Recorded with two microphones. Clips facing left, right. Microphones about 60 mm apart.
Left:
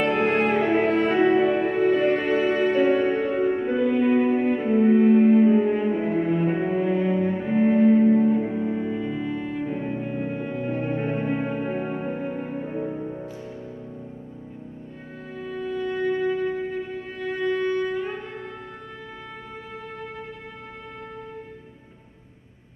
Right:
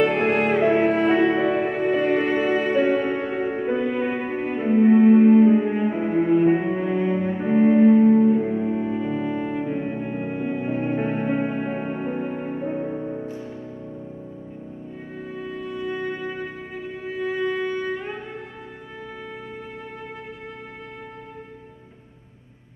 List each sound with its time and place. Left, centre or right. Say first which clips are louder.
0.0 s music: right 1 dB; centre
5.9 s cello: right 4 dB; centre
12.9 s music: right 3 dB; centre
15.4 s music: left 3 dB; centre